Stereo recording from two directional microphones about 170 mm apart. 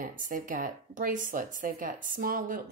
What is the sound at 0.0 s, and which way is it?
A woman's voice, 50° right (ahead or behind).